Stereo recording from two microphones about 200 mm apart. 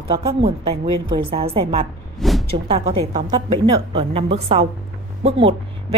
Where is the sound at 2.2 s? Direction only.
Centre (ahead or behind).